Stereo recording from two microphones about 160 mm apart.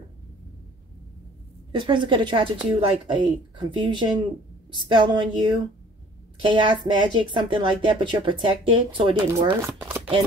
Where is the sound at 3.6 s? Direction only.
30° right (ahead or behind).